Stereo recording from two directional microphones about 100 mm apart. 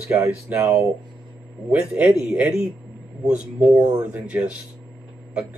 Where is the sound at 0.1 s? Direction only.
25° right (ahead or behind).